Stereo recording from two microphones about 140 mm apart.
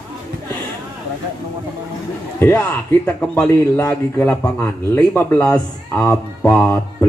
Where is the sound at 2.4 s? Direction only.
15° left (ahead or behind).